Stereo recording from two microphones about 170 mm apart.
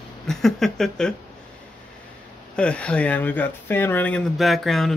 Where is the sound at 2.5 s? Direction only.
5° left (ahead or behind).